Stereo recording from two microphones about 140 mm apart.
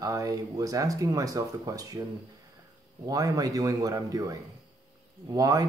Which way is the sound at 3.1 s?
25° right (ahead or behind).